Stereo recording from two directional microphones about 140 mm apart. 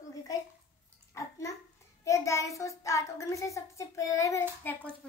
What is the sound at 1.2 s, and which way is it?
A child's voice, 20° left (ahead or behind).